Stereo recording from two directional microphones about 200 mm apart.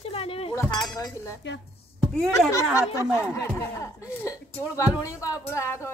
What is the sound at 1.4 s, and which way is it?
Speech, 60° left (ahead or behind).